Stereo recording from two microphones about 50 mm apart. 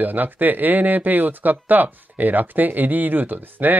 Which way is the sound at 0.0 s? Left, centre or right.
Right.